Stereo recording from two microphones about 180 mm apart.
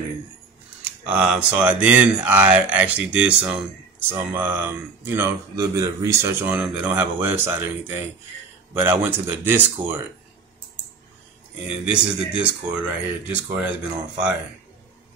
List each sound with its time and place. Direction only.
0.8 s speech: 10° right (ahead or behind)
11.8 s speech: 5° right (ahead or behind)